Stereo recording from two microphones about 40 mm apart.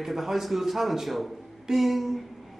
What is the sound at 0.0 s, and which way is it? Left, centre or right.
A man's voice, centre.